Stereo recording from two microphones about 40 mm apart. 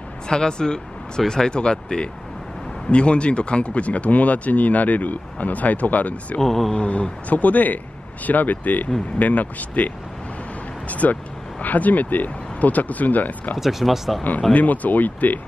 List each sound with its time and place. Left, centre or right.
0.3 s speech: centre; by 6.4 s left
6.4 s speech: centre
6.7 s speech: left
10.9 s vehicle: left
11.6 s speech: left
13.6 s speech: centre
14.5 s speech: left